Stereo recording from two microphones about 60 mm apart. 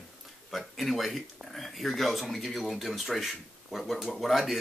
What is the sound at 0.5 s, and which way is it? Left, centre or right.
Speech, centre.